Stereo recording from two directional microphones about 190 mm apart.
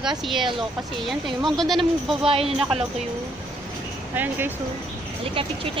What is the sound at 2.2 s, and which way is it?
Speech, 30° right (ahead or behind).